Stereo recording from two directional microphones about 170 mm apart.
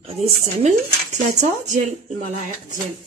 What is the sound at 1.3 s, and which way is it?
A woman's voice, 45° right (ahead or behind).